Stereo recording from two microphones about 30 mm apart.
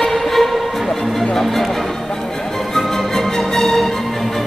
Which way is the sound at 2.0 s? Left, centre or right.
Centre.